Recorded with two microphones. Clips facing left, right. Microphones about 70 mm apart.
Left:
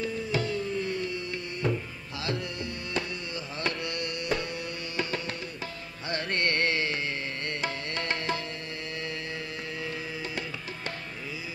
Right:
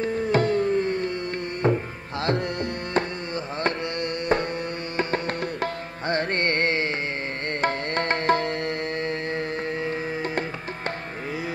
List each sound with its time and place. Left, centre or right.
0.0 s music: right
1.6 s tabla: right
2.2 s tabla: right
4.9 s music: right
5.4 s tabla: right
6.1 s music: right
7.6 s music: right
9.8 s music: right